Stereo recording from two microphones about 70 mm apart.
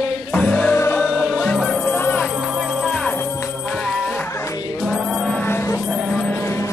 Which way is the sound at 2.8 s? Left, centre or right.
Centre.